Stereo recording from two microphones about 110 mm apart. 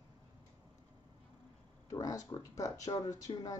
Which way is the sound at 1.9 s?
35° left (ahead or behind).